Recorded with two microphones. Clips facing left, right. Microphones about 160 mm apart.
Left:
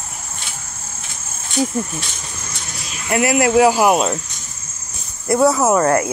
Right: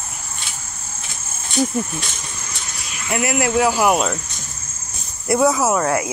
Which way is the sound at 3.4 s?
20° left (ahead or behind).